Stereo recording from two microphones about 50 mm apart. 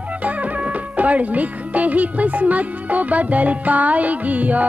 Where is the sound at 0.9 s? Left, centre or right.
Right.